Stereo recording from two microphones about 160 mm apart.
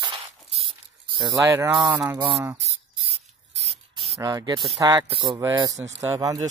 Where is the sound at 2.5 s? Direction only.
40° right (ahead or behind).